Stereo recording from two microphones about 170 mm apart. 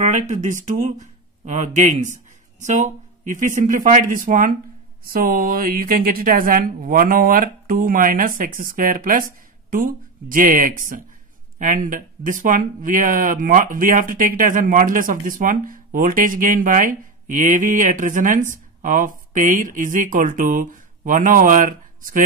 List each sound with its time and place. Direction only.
0.0 s a woman's voice: 45° right (ahead or behind)